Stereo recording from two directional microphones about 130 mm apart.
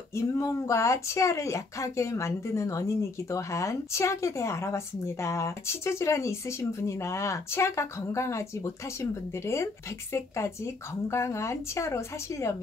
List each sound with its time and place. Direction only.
0.1 s speech: 20° left (ahead or behind)